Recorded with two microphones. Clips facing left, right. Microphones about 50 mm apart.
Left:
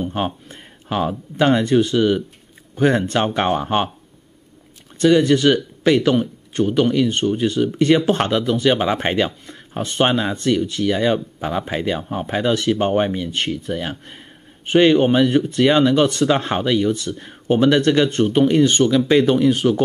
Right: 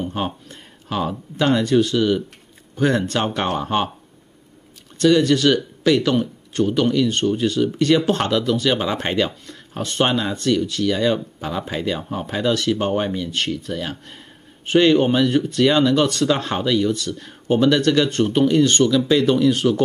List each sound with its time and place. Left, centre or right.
0.1 s speech: centre
4.9 s speech: centre
18.9 s speech: left